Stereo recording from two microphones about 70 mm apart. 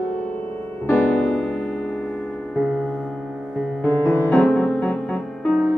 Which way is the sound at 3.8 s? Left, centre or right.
Centre.